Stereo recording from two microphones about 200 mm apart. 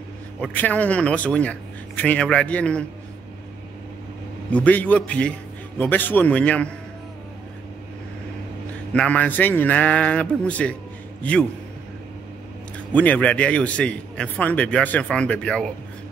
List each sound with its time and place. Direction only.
0.4 s a man's voice: 5° left (ahead or behind)
4.5 s a man's voice: 5° left (ahead or behind)
8.9 s a man's voice: 5° left (ahead or behind)
12.7 s a man's voice: 10° left (ahead or behind)